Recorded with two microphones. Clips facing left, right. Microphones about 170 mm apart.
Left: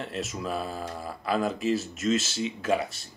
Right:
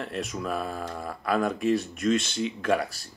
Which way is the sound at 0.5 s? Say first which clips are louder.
Right 1 dB; 30° left (ahead or behind).